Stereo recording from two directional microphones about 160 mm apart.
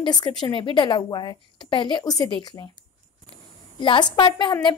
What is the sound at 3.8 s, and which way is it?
Speech, 30° left (ahead or behind).